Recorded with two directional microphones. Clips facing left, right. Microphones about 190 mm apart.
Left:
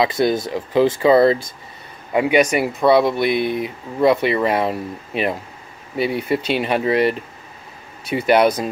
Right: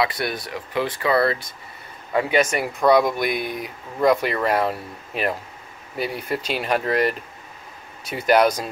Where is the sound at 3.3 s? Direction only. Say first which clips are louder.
Left 6 dB; 45° right (ahead or behind).